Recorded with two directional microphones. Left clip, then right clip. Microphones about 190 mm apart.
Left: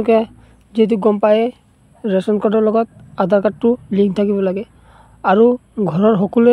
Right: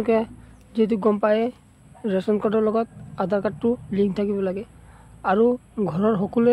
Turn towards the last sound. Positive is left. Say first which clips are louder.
# left 8 dB
turn(degrees=30)  # may be behind; listen again after turning